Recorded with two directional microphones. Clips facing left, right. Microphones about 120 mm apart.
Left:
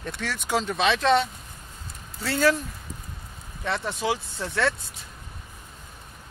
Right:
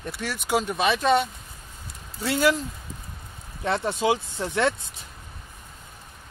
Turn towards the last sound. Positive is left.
turn(degrees=-20)  # may be behind; listen again after turning